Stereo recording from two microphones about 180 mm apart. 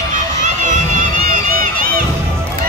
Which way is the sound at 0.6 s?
45° right (ahead or behind).